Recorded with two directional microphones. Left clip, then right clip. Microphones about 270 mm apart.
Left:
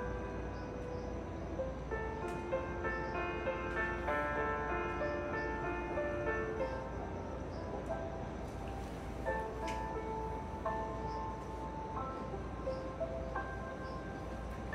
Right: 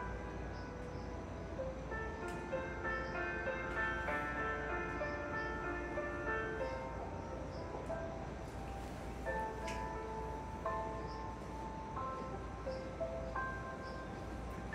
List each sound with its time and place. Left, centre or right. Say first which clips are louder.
3.3 s music: left 2 dB; left